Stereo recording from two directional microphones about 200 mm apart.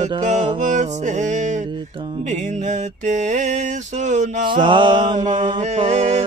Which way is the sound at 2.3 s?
40° right (ahead or behind).